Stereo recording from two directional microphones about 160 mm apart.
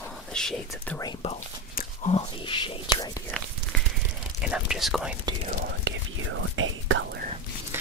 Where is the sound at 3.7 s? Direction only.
5° left (ahead or behind).